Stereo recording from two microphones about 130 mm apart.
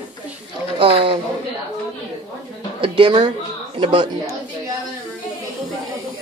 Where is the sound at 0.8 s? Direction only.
45° right (ahead or behind).